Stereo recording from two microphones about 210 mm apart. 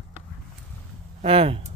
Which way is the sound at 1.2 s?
25° right (ahead or behind).